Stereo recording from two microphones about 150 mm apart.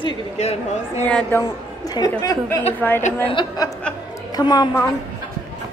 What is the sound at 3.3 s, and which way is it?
A woman's voice, 30° left (ahead or behind).